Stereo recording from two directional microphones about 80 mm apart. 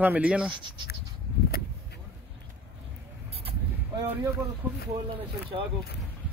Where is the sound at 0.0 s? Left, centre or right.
Centre.